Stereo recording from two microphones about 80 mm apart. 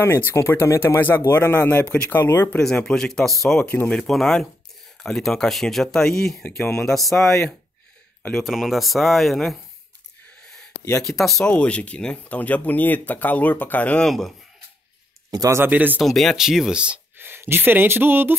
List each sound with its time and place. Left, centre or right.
0.0 s speech: left
2.6 s speech: centre
3.5 s speech: left
4.1 s speech: centre
8.2 s speech: left
8.5 s speech: centre
10.2 s a sound: centre
11.0 s speech: centre
11.4 s speech: centre
14.0 s speech: centre
15.3 s speech: right
15.7 s speech: right
16.0 s speech: centre
17.2 s speech: right